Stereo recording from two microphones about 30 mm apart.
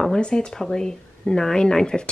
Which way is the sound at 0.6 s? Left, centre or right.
Centre.